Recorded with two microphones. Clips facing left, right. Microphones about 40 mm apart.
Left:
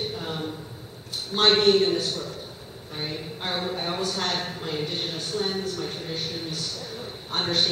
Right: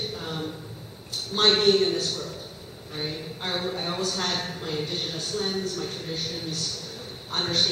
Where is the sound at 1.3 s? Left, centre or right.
Centre.